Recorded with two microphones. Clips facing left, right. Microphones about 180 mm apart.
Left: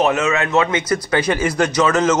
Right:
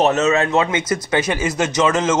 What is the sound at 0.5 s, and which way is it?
Speech, 25° right (ahead or behind).